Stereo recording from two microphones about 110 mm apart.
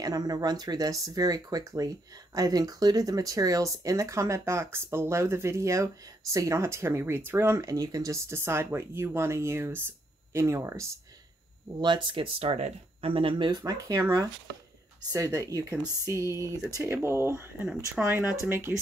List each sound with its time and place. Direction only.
0.0 s speech: 35° right (ahead or behind)
11.8 s speech: 45° right (ahead or behind); by 18.8 s 20° right (ahead or behind)